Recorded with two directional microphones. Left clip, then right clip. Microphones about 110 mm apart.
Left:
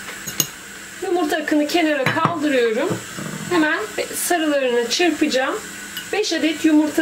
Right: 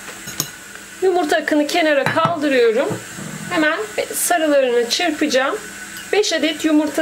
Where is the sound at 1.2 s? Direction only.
40° right (ahead or behind).